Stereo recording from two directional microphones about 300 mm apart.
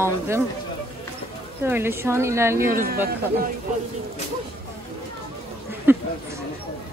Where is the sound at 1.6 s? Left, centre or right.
Centre.